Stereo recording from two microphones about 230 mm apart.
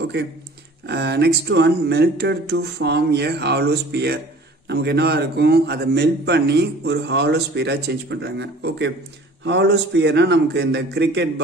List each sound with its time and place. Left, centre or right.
0.0 s a man's voice: right